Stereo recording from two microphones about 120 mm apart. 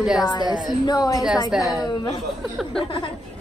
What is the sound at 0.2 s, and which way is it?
Speech, 35° left (ahead or behind).